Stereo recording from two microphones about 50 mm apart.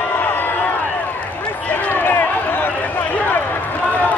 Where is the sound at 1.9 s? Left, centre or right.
Left.